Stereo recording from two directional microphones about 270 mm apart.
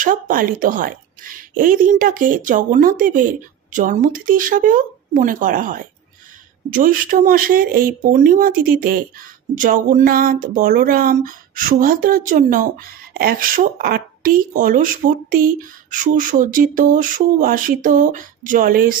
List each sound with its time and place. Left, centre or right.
0.0 s a woman's voice: right